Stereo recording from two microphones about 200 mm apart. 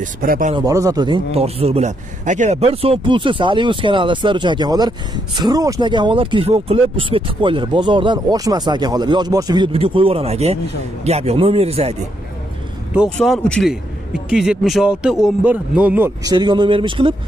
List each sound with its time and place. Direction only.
0.0 s speech: 40° right (ahead or behind)
0.6 s a man's voice: 20° right (ahead or behind)
12.9 s a man's voice: centre (ahead or behind)
16.3 s a man's voice: 20° right (ahead or behind)